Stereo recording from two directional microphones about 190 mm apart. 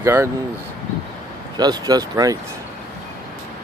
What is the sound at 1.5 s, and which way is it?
Speech, 20° right (ahead or behind).